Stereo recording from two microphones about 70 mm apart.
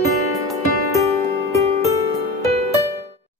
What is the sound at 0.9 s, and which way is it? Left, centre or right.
Music, left.